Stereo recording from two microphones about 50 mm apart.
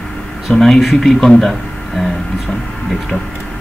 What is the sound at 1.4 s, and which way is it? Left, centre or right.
Music, centre.